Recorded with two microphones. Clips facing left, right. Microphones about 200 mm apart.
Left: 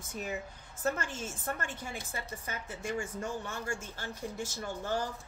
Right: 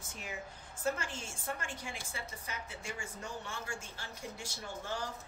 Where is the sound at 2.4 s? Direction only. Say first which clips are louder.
Left 5 dB; 45° left (ahead or behind).